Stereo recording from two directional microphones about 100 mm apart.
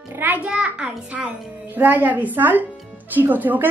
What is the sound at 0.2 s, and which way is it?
A child's voice, 15° right (ahead or behind).